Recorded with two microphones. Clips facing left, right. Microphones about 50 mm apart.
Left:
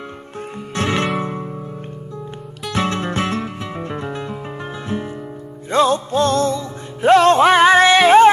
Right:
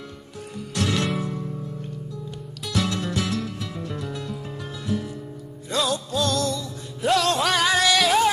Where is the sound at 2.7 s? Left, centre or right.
Left.